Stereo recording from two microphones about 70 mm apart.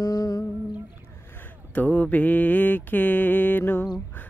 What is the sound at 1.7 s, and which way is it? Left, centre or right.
Mantra, left.